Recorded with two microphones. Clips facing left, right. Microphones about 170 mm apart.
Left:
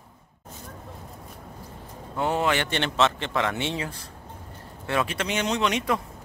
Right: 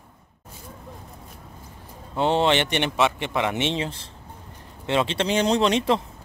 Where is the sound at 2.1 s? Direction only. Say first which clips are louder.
Right 4 dB; 25° right (ahead or behind).